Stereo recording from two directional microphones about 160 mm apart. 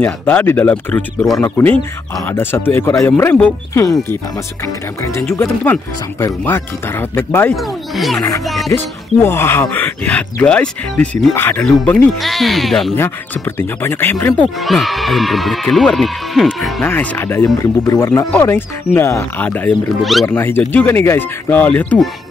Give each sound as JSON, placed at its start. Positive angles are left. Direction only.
{"t": 0.0, "sound": "speech", "side_deg": 15}
{"t": 5.4, "sound": "speech", "side_deg": 10}
{"t": 7.9, "sound": "speech", "side_deg": 0}
{"t": 9.2, "sound": "speech", "side_deg": 15}
{"t": 13.6, "sound": "speech", "side_deg": 15}
{"t": 14.6, "sound": "speech", "side_deg": 0}
{"t": 16.8, "sound": "speech", "side_deg": 10}
{"t": 20.0, "sound": "speech", "side_deg": 0}
{"t": 20.2, "sound": "speech", "side_deg": 15}